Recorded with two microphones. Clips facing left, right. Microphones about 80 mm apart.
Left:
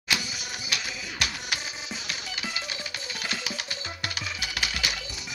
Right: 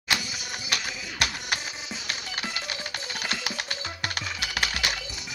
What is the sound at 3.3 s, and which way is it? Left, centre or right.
Music, right.